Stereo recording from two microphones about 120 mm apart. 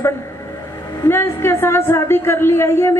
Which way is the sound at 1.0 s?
20° left (ahead or behind).